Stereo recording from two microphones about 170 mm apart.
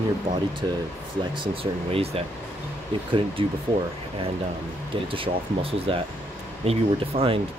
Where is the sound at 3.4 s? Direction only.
30° right (ahead or behind).